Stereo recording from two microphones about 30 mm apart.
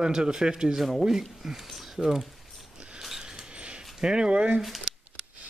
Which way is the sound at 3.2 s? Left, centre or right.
Right.